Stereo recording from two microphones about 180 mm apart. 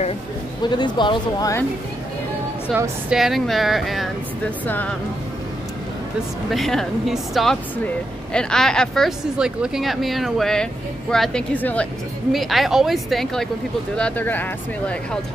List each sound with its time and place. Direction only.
0.6 s speech: 25° left (ahead or behind)
2.7 s speech: 5° right (ahead or behind); by 4.9 s 10° left (ahead or behind)
6.5 s speech: centre (ahead or behind)